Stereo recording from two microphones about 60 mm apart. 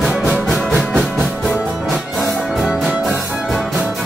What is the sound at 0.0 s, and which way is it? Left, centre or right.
Music, centre.